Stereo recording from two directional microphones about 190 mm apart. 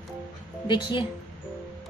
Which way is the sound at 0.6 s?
25° left (ahead or behind).